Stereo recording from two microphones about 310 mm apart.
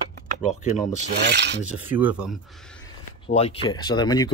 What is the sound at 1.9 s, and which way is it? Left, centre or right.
Speech, centre.